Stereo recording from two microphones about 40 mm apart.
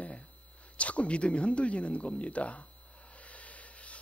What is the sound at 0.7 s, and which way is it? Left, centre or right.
A man's voice, left.